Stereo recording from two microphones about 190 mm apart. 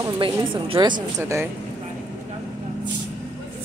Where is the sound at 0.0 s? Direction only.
25° right (ahead or behind).